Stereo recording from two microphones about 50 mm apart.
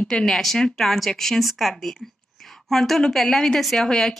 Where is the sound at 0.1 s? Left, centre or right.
Centre.